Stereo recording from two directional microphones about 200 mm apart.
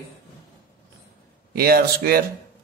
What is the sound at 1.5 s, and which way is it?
Speech, 50° right (ahead or behind).